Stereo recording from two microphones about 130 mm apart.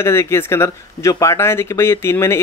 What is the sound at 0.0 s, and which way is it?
Speech, 20° left (ahead or behind).